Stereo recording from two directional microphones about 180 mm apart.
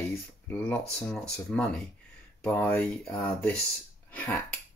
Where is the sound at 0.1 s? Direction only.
10° left (ahead or behind).